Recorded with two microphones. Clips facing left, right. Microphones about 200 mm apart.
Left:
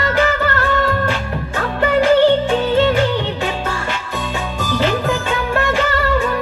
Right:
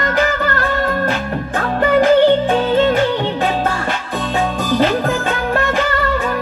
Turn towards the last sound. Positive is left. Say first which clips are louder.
# even
turn(degrees=-50)  # may be behind; listen again after turning